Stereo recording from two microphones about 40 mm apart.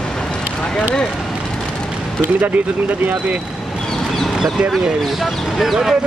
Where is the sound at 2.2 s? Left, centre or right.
Right.